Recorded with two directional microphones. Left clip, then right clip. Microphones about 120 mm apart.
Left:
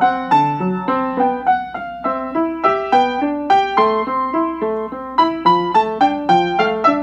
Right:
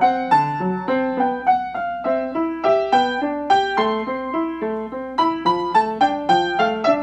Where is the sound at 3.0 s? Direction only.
30° left (ahead or behind).